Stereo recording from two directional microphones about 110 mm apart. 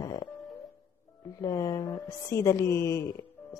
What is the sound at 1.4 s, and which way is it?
A woman's voice, 35° left (ahead or behind).